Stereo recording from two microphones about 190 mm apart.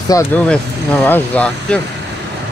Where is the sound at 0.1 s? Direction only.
15° left (ahead or behind).